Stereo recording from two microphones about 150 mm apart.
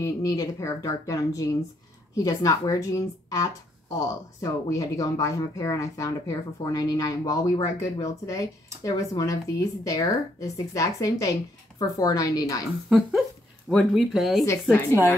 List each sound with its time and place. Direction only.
0.0 s speech: 25° left (ahead or behind)
13.7 s speech: centre (ahead or behind)
14.4 s speech: 20° left (ahead or behind)